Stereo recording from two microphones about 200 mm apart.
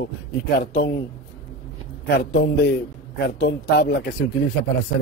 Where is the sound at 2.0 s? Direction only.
55° left (ahead or behind).